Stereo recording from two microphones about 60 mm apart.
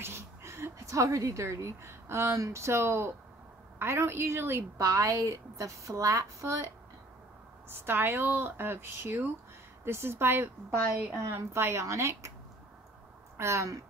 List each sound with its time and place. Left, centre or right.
0.0 s a woman's voice: right
4.7 s a woman's voice: right
7.7 s a woman's voice: right
13.4 s a woman's voice: right